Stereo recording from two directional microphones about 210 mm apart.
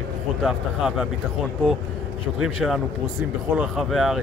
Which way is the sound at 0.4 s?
Centre (ahead or behind).